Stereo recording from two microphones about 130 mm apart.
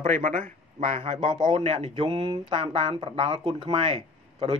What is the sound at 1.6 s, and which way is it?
Speech, 50° right (ahead or behind).